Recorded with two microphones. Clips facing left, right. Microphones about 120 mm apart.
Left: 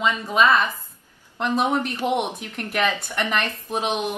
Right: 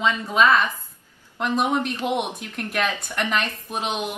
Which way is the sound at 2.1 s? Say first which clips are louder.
Left 1 dB; centre (ahead or behind).